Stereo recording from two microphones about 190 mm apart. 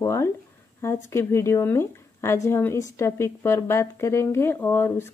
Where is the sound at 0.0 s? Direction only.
15° left (ahead or behind).